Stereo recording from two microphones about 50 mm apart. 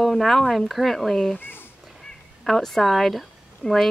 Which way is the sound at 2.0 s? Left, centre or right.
Centre.